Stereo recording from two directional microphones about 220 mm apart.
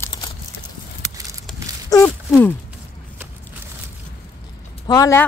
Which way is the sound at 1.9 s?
10° left (ahead or behind).